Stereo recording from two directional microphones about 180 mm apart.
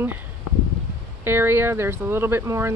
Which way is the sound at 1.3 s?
10° right (ahead or behind).